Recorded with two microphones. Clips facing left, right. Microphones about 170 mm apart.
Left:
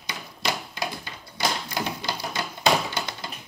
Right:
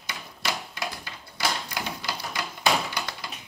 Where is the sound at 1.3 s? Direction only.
25° left (ahead or behind).